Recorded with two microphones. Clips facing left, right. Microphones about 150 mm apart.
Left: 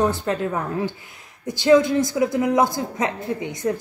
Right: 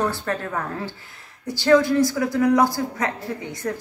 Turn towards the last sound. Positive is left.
turn(degrees=20)  # may be behind; listen again after turning